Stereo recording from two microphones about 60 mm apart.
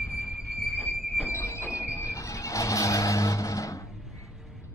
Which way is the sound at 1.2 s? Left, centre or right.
Left.